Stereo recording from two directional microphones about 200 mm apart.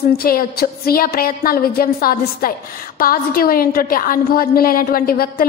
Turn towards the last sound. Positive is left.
turn(degrees=45)  # may be behind; listen again after turning